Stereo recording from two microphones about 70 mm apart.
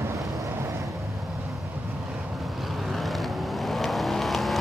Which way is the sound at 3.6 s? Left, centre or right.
Centre.